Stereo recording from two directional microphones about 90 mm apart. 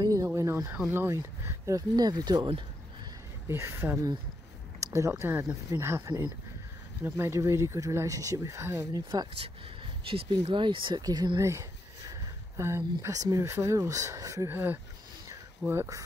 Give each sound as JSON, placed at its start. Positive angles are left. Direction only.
{"t": 0.0, "sound": "a sound", "side_deg": -40}
{"t": 0.8, "sound": "speech", "side_deg": -30}
{"t": 1.8, "sound": "speech", "side_deg": -45}
{"t": 3.4, "sound": "speech", "side_deg": -30}
{"t": 4.8, "sound": "a sound", "side_deg": -35}
{"t": 5.2, "sound": "speech", "side_deg": -30}
{"t": 8.9, "sound": "speech", "side_deg": -50}
{"t": 10.0, "sound": "speech", "side_deg": -80}
{"t": 12.1, "sound": "a sound", "side_deg": -30}
{"t": 13.0, "sound": "speech", "side_deg": -40}
{"t": 14.5, "sound": "speech", "side_deg": -25}